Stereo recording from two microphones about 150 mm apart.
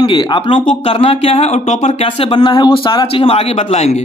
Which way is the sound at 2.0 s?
35° left (ahead or behind).